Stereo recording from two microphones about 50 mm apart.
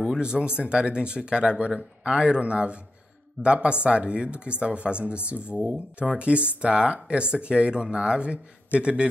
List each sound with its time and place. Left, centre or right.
0.0 s speech: centre